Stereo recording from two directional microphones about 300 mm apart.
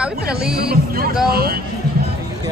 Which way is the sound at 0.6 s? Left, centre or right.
Right.